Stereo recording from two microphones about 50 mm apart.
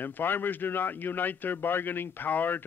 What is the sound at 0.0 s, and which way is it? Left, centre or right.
A man's voice, left.